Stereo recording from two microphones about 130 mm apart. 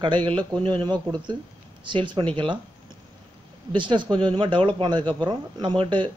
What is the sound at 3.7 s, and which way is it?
Speech, 40° right (ahead or behind).